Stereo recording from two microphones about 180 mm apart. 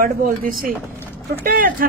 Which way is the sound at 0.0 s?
50° right (ahead or behind).